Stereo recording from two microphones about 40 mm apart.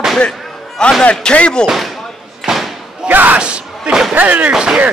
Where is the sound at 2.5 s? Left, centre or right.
Centre.